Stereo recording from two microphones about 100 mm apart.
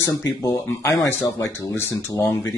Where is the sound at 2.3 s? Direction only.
5° left (ahead or behind).